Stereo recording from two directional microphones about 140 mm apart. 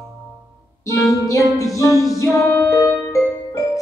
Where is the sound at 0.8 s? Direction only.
20° left (ahead or behind).